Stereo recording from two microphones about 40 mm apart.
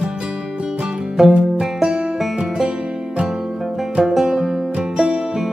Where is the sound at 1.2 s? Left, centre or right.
Centre.